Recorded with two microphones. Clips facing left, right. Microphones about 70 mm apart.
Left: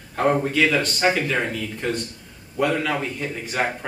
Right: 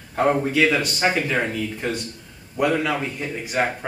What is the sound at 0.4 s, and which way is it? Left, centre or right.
Speech, centre.